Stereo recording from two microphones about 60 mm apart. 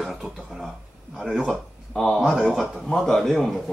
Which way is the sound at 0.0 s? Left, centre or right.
Centre.